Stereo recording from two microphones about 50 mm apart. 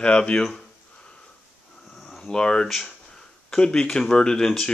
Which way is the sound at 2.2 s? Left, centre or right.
Centre.